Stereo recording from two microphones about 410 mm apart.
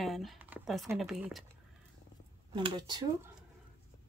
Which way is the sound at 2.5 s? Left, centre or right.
Centre.